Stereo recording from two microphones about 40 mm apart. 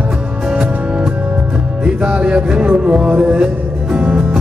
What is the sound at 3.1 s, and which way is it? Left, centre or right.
Speech, right.